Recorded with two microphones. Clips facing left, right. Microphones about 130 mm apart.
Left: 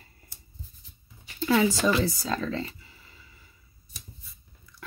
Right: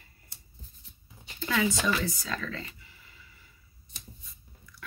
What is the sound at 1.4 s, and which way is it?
Speech, 35° left (ahead or behind).